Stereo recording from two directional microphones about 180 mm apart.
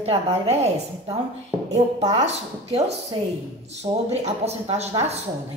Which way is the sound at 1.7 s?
40° right (ahead or behind).